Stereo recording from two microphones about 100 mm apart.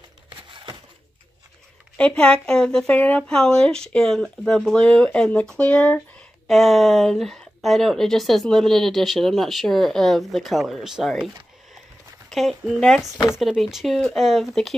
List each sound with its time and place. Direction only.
0.3 s a sound: 60° right (ahead or behind)
2.0 s speech: 10° left (ahead or behind)
12.3 s speech: centre (ahead or behind)